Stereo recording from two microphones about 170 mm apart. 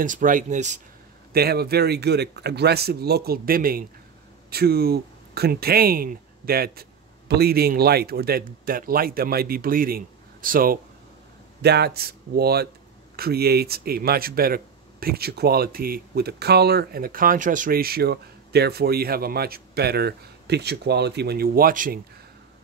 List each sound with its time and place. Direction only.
0.0 s speech: 50° right (ahead or behind)
1.3 s speech: 70° right (ahead or behind)
11.6 s speech: 75° right (ahead or behind); by 22.0 s 55° right (ahead or behind)